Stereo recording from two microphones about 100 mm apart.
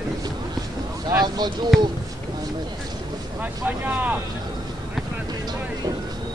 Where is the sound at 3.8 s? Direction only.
15° right (ahead or behind).